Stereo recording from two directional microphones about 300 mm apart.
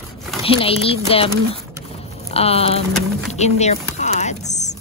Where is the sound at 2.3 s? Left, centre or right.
Centre.